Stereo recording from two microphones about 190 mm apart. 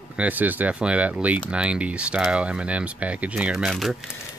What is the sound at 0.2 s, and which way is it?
Speech, 10° right (ahead or behind).